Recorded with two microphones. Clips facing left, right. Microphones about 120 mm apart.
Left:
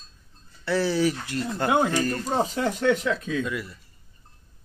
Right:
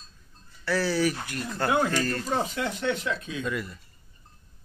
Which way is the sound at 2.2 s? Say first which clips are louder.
Left 3 dB; 35° left (ahead or behind).